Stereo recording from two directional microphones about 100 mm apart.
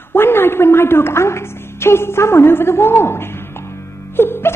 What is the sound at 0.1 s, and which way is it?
A woman's voice, 20° left (ahead or behind).